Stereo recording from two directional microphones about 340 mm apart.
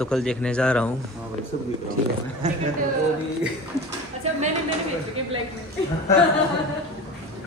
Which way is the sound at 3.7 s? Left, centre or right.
Centre.